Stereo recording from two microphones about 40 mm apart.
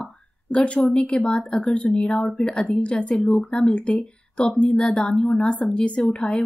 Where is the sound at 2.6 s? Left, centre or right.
Left.